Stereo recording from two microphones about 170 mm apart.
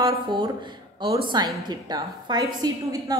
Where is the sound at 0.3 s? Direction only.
25° right (ahead or behind).